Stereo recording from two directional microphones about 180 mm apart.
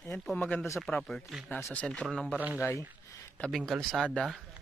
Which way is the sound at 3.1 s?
15° left (ahead or behind).